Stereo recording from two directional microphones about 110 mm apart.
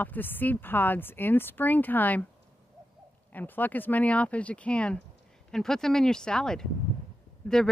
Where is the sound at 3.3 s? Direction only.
15° left (ahead or behind).